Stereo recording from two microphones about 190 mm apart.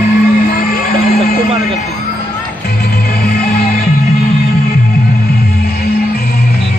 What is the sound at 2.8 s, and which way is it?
Music, 55° left (ahead or behind).